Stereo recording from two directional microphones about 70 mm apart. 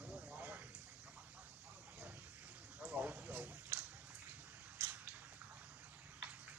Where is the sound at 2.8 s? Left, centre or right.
Right.